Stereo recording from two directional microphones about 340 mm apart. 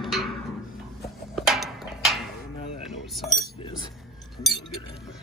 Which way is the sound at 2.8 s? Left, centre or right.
Centre.